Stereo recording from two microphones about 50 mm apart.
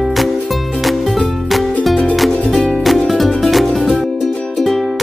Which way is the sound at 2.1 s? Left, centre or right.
Centre.